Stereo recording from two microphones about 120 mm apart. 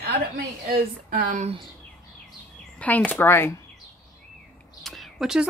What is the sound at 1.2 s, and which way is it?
Speech, 90° right.